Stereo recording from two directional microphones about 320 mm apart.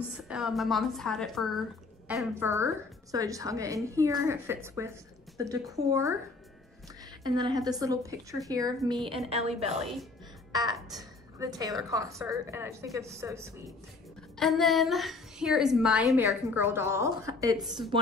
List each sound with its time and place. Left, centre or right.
0.3 s a woman's voice: centre
7.2 s a woman's voice: centre